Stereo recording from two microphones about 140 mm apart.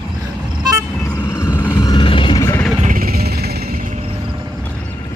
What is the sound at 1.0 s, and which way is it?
Vehicle, 25° left (ahead or behind).